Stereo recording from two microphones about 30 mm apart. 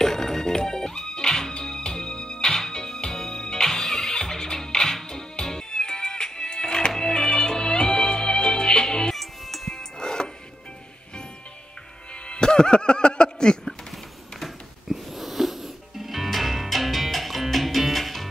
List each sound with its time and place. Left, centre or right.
0.0 s music: centre
2.5 s music: centre
7.0 s music: centre
9.1 s music: centre
9.7 s music: left
12.3 s a sound: left
13.4 s a sound: left
14.4 s music: centre